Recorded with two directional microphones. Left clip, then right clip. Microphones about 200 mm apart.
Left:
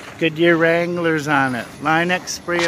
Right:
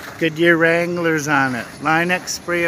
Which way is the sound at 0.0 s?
Centre (ahead or behind).